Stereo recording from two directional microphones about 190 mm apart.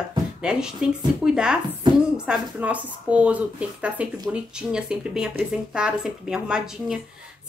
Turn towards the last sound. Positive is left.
turn(degrees=-5)  # may be behind; listen again after turning